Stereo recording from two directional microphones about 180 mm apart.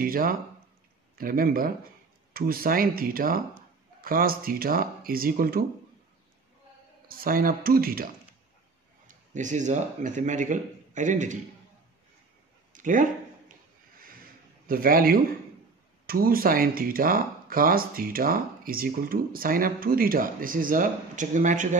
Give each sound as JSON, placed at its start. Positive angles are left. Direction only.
{"t": 0.0, "sound": "speech", "side_deg": -50}
{"t": 7.1, "sound": "speech", "side_deg": -55}
{"t": 9.0, "sound": "speech", "side_deg": -45}
{"t": 12.7, "sound": "speech", "side_deg": -45}
{"t": 14.7, "sound": "speech", "side_deg": -55}